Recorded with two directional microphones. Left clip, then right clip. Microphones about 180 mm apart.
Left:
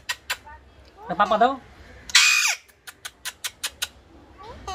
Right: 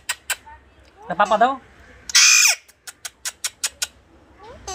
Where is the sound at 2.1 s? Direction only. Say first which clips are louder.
Right 3 dB; 10° right (ahead or behind).